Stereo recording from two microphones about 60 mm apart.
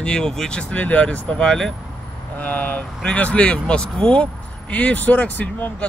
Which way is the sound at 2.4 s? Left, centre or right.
Left.